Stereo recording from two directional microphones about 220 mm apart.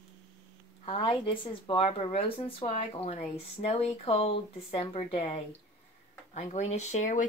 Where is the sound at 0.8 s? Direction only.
25° left (ahead or behind).